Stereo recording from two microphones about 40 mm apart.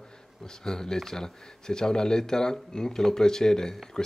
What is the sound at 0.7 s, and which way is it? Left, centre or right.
Speech, centre.